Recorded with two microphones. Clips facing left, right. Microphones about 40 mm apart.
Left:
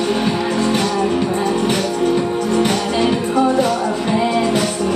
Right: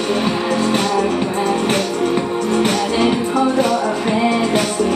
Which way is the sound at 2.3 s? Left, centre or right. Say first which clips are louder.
Even; right.